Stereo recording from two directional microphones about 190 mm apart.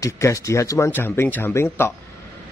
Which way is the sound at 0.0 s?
15° left (ahead or behind).